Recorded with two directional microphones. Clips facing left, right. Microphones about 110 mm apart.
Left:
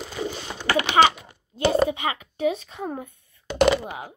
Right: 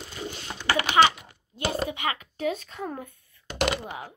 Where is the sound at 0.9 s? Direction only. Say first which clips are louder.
Left 2 dB; 30° left (ahead or behind).